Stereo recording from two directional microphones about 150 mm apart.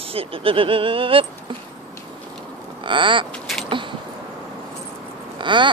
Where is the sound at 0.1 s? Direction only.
40° right (ahead or behind).